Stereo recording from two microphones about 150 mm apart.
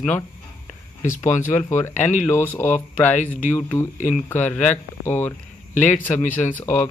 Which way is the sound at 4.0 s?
55° left (ahead or behind).